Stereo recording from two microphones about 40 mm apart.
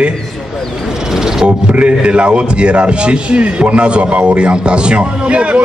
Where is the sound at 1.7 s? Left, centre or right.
Right.